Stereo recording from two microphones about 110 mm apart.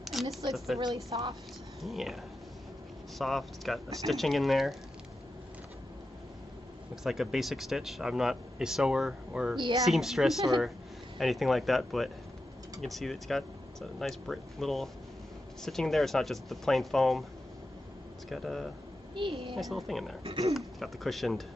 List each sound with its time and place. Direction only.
0.0 s speech: centre (ahead or behind)
1.1 s a woman's voice: 45° right (ahead or behind)
1.8 s speech: centre (ahead or behind)
3.2 s speech: centre (ahead or behind)
7.0 s speech: 5° right (ahead or behind)
18.3 s speech: centre (ahead or behind)
19.1 s a woman's voice: 50° right (ahead or behind)
19.5 s speech: centre (ahead or behind)
20.2 s speech: 55° right (ahead or behind)
20.5 s speech: centre (ahead or behind)